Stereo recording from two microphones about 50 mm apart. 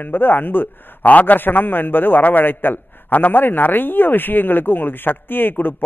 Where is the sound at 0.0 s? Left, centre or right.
Left.